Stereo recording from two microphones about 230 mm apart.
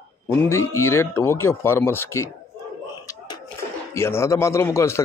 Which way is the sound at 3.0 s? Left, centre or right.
Centre.